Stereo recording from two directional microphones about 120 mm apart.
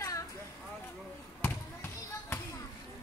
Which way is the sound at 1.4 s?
20° left (ahead or behind).